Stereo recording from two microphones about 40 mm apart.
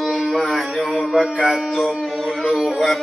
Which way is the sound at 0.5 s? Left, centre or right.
Centre.